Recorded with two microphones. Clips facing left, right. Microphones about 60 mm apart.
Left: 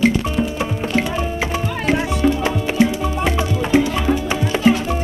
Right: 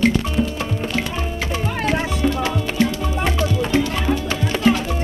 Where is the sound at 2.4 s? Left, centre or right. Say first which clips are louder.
Left 3 dB; centre.